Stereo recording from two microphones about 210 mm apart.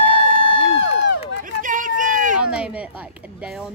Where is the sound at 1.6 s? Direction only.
40° right (ahead or behind).